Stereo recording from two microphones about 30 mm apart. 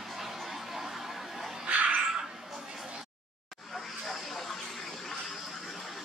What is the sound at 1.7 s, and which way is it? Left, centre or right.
Cat, right.